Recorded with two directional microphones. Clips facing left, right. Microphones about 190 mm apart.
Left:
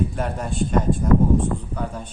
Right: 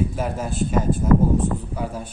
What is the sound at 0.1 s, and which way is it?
A woman's voice, centre (ahead or behind).